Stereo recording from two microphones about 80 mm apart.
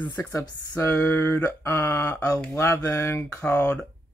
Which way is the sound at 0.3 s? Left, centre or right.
Left.